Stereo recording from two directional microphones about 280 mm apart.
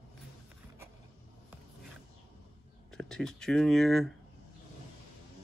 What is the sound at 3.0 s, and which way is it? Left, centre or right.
Speech, centre.